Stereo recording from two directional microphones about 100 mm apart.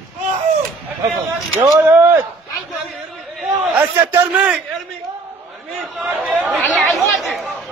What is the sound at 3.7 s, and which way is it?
Speech, 15° right (ahead or behind).